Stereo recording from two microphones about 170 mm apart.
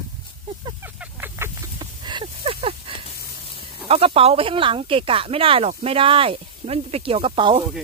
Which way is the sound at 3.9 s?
35° right (ahead or behind).